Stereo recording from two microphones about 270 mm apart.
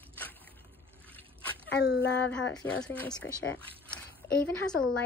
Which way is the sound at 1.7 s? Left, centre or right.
Left.